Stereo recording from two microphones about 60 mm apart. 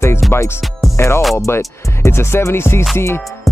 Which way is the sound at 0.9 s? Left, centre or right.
Left.